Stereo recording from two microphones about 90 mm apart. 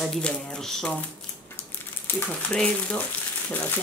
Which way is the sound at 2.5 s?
15° left (ahead or behind).